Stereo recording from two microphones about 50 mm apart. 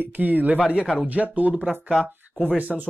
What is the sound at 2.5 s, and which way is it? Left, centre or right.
Speech, right.